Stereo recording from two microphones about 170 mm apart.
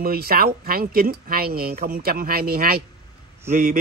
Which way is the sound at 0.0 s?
60° right (ahead or behind).